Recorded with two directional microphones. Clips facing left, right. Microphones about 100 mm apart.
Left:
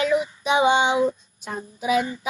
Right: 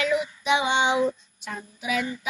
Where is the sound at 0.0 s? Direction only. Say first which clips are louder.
Left 3 dB; 40° left (ahead or behind).